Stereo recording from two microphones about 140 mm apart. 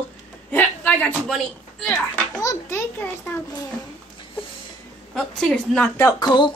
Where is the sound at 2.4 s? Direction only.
25° left (ahead or behind).